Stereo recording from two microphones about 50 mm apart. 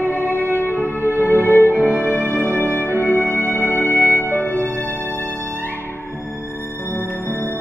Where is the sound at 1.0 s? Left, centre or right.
Left.